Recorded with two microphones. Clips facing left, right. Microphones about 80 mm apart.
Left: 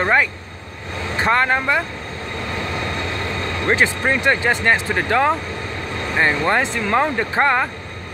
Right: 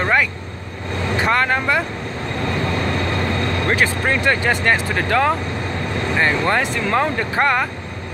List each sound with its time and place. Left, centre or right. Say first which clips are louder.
1.2 s speech: left 1 dB; left
3.6 s speech: left 3 dB; left